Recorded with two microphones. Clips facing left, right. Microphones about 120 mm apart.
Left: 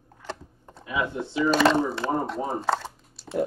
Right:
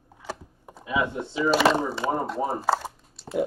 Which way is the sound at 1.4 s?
5° right (ahead or behind).